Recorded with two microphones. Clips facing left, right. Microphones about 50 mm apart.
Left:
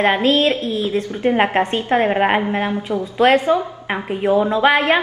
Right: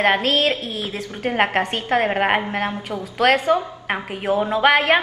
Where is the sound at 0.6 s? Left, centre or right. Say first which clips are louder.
Left 7 dB; right.